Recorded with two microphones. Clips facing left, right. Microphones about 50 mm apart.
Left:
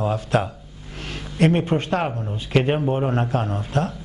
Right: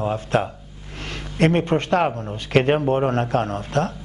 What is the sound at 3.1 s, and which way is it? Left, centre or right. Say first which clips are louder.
Speech: right 2 dB; right.